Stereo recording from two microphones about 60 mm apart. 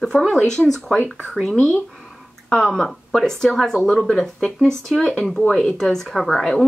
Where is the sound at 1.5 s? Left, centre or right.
Left.